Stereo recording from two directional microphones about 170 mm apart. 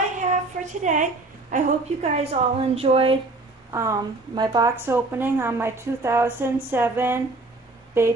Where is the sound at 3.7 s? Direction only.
20° right (ahead or behind).